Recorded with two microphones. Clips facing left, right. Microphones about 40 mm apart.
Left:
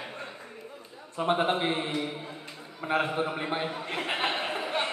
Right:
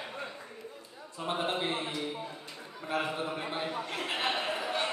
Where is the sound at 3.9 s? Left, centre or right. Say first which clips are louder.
Left 5 dB; left.